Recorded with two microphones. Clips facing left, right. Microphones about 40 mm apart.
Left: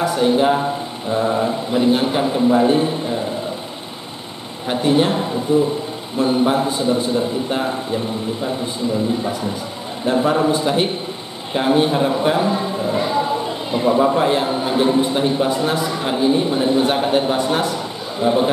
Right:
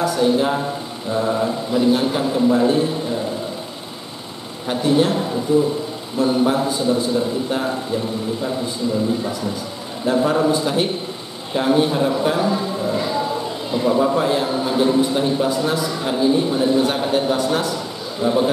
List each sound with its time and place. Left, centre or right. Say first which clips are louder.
0.0 s a man's voice: left 2 dB; left
1.7 s a man's voice: even; left
4.6 s a man's voice: left 1 dB; left
10.0 s a man's voice: left 1 dB; centre